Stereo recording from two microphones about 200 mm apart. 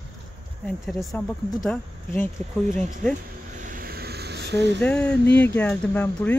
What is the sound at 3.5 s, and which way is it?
Vehicle, 40° right (ahead or behind).